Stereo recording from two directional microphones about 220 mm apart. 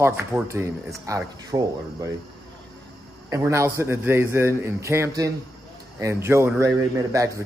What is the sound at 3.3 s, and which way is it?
Speech, 15° right (ahead or behind).